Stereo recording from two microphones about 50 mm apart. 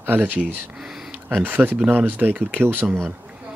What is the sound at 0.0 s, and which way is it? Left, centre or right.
Speech, right.